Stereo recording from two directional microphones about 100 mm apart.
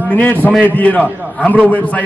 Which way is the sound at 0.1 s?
15° left (ahead or behind).